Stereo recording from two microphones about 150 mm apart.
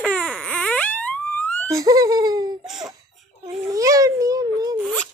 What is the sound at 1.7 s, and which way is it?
Laughter, 25° right (ahead or behind).